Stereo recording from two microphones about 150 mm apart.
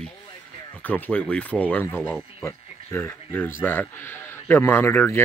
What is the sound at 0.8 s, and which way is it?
A man's voice, 10° left (ahead or behind).